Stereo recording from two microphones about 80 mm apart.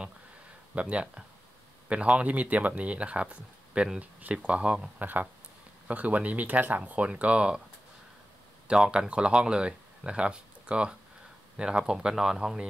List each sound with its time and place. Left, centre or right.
0.7 s speech: centre
5.0 s speech: right
8.6 s speech: centre